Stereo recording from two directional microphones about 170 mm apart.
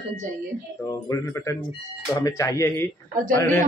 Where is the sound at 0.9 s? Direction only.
15° left (ahead or behind).